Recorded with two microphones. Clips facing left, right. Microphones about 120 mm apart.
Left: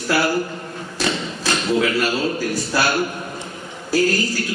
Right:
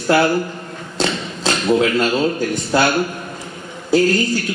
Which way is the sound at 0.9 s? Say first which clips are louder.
Right 2 dB; 25° right (ahead or behind).